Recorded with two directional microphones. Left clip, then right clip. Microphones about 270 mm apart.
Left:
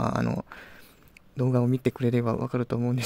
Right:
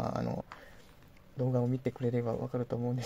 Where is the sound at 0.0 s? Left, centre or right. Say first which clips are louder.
Left 7 dB; left.